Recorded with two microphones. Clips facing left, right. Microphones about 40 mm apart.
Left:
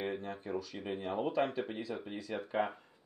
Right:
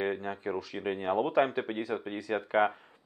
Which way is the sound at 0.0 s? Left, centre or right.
Right.